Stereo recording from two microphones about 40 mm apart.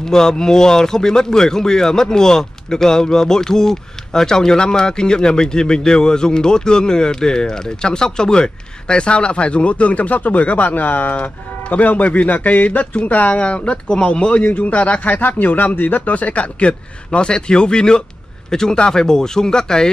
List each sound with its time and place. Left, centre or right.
0.0 s speech: centre; by 11.1 s left
11.1 s speech: left
14.4 s speech: left; by 19.9 s centre